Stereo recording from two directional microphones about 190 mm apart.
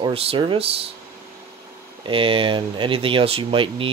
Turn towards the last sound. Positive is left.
turn(degrees=-30)  # may be behind; listen again after turning